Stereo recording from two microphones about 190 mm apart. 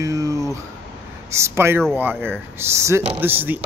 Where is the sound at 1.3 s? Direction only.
15° right (ahead or behind).